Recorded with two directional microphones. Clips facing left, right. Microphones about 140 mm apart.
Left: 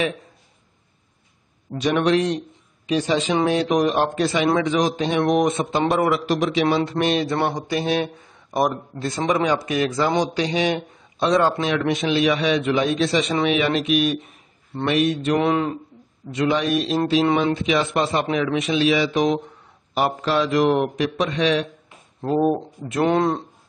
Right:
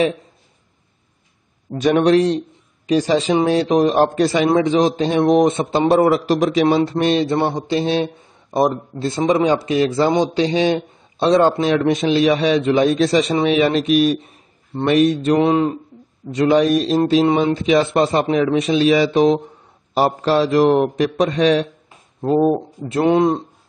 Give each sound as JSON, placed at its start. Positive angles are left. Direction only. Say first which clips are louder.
{"t": 1.8, "sound": "a man's voice", "louder": "right 5 dB", "side_deg": -45}
{"t": 15.3, "sound": "speech", "louder": "right 3 dB", "side_deg": -25}
{"t": 16.3, "sound": "a man's voice", "louder": "right 6 dB", "side_deg": -40}
{"t": 22.2, "sound": "a man's voice", "louder": "right 4 dB", "side_deg": -20}